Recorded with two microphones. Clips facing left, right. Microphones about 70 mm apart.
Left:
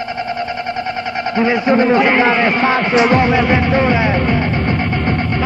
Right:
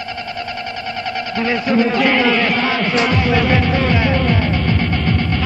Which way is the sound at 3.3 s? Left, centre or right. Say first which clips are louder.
Left 2 dB; centre.